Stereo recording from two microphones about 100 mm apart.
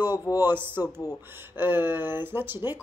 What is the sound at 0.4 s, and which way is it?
Speech, 20° right (ahead or behind).